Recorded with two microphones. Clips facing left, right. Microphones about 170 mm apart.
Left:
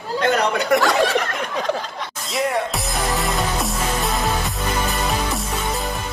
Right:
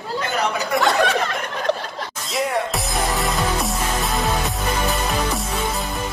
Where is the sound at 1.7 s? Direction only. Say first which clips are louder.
Right 3 dB; 10° left (ahead or behind).